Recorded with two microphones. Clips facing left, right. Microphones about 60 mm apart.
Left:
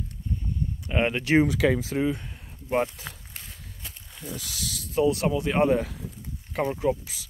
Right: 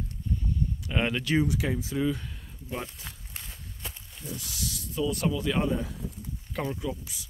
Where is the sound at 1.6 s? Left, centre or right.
Left.